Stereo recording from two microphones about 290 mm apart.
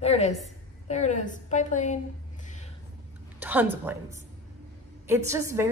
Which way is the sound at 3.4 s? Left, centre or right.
Centre.